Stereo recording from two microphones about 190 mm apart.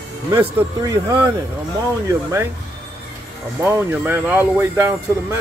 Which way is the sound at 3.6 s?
10° right (ahead or behind).